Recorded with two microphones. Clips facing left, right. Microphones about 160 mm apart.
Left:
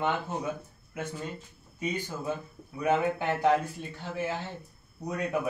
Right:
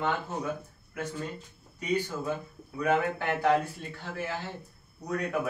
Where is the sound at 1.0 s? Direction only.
25° left (ahead or behind).